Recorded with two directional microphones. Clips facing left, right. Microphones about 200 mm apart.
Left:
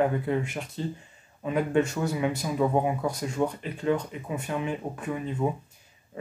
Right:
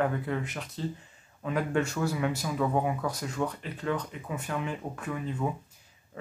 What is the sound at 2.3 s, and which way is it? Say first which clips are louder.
Speech: left 3 dB; 20° left (ahead or behind).